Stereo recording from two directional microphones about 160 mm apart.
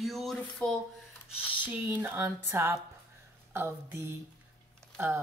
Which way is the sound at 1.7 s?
10° right (ahead or behind).